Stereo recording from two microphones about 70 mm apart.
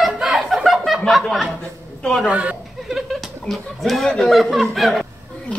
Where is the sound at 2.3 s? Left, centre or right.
Right.